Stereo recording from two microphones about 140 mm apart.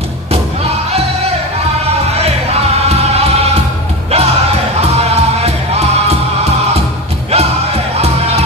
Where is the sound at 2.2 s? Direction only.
45° right (ahead or behind).